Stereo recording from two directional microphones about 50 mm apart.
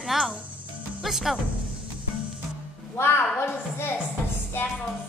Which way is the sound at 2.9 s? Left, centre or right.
Left.